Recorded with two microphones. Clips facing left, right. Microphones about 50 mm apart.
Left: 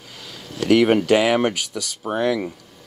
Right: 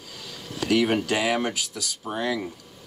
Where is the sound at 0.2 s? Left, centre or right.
Left.